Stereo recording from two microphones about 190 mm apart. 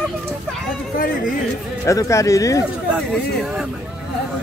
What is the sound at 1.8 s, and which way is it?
Speech, 15° left (ahead or behind).